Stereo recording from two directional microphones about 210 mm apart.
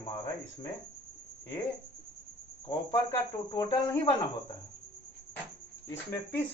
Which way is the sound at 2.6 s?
20° left (ahead or behind).